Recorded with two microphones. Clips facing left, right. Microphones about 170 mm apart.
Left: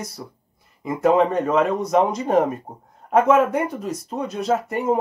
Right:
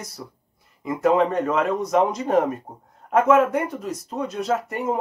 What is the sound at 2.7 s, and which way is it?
Speech, 20° left (ahead or behind).